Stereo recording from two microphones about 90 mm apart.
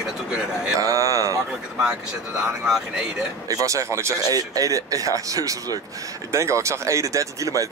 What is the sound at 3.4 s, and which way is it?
Speech, 40° right (ahead or behind).